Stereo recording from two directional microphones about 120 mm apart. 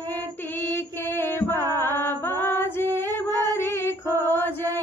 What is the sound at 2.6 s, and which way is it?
Female singing, 20° left (ahead or behind).